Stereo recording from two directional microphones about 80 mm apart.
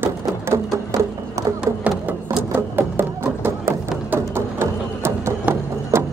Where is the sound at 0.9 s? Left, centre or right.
Right.